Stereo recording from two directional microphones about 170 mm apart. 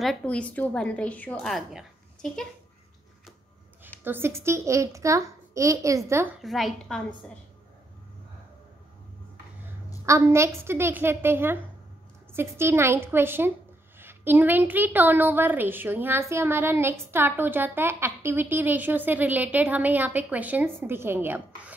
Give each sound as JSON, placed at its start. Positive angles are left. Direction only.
{"t": 0.0, "sound": "a woman's voice", "side_deg": 5}
{"t": 4.0, "sound": "a woman's voice", "side_deg": -15}
{"t": 6.4, "sound": "a woman's voice", "side_deg": 0}
{"t": 10.0, "sound": "a woman's voice", "side_deg": -15}